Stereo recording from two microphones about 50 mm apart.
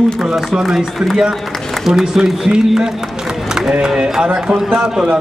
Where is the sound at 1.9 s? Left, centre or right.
Centre.